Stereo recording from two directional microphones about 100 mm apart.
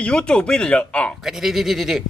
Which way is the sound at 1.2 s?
5° right (ahead or behind).